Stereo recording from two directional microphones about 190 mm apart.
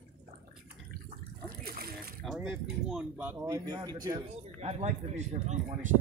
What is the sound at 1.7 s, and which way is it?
Speech, 50° right (ahead or behind).